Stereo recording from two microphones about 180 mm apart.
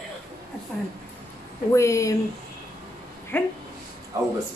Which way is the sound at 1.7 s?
15° left (ahead or behind).